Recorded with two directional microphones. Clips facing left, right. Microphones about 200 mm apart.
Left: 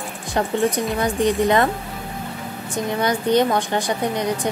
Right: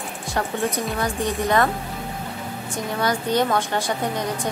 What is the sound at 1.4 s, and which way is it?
Speech, 20° left (ahead or behind).